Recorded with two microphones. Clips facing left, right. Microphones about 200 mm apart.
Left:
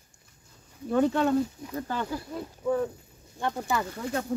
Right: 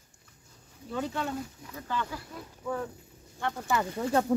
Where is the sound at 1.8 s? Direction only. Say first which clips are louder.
Left 3 dB; 40° left (ahead or behind).